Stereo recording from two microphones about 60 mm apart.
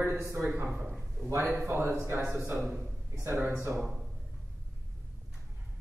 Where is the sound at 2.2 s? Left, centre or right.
Right.